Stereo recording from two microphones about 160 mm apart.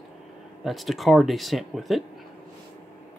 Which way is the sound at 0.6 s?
Centre (ahead or behind).